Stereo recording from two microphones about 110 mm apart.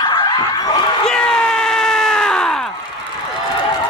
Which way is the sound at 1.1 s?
5° left (ahead or behind).